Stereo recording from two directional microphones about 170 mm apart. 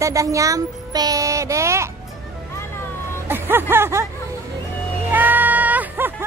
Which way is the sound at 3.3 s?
10° right (ahead or behind).